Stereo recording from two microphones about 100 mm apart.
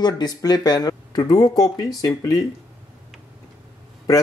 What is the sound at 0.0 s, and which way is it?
Speech, 40° left (ahead or behind).